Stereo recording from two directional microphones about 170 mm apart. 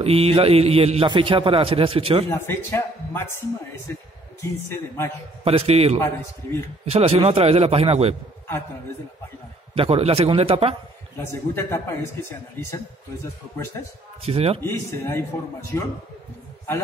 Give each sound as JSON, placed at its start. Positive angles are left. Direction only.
{"t": 0.0, "sound": "a man's voice", "side_deg": -35}
{"t": 2.3, "sound": "a man's voice", "side_deg": 15}
{"t": 4.4, "sound": "a man's voice", "side_deg": 15}
{"t": 5.4, "sound": "a man's voice", "side_deg": -35}
{"t": 9.8, "sound": "a man's voice", "side_deg": -35}
{"t": 11.1, "sound": "a man's voice", "side_deg": 15}
{"t": 14.2, "sound": "a man's voice", "side_deg": -35}
{"t": 14.6, "sound": "a man's voice", "side_deg": 15}